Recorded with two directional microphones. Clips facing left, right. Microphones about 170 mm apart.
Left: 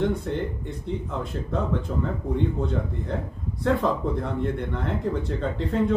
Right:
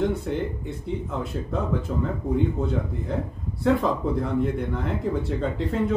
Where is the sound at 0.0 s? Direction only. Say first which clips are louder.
Even; 5° right (ahead or behind).